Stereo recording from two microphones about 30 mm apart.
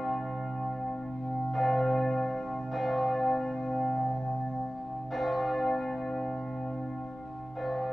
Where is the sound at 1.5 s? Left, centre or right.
Centre.